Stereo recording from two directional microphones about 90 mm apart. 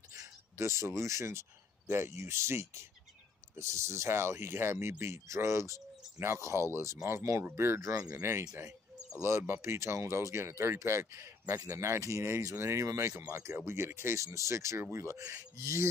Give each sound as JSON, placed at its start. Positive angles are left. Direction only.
{"t": 0.1, "sound": "a sound", "side_deg": -35}
{"t": 1.9, "sound": "speech", "side_deg": -25}
{"t": 7.9, "sound": "speech", "side_deg": -40}
{"t": 8.2, "sound": "speech", "side_deg": -25}
{"t": 8.5, "sound": "cricket", "side_deg": -30}
{"t": 9.4, "sound": "speech", "side_deg": -25}